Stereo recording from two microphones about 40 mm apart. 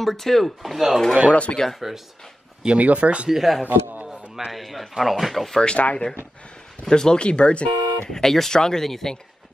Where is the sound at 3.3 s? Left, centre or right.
Centre.